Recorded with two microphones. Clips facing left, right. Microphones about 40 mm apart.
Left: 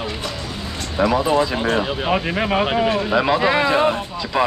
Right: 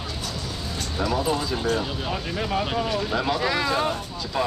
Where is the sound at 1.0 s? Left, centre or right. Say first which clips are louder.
Left 8 dB; left.